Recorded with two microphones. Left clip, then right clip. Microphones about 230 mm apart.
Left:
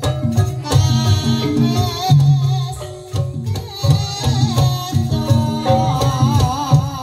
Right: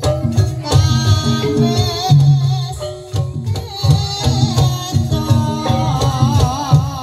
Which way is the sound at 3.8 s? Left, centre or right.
Left.